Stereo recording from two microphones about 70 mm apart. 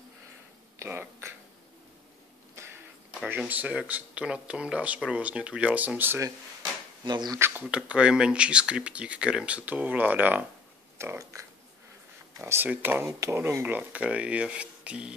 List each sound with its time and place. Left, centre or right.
0.7 s a sound: right
3.3 s speech: right
6.2 s drawer open or close: right
7.3 s speech: right
7.7 s speech: centre
11.0 s speech: right
12.6 s speech: right